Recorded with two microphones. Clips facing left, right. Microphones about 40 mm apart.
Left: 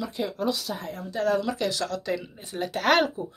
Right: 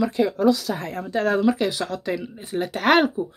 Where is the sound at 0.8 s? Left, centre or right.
Right.